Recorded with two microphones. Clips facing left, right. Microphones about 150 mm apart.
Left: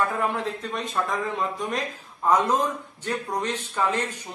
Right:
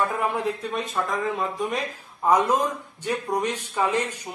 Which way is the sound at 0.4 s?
5° right (ahead or behind).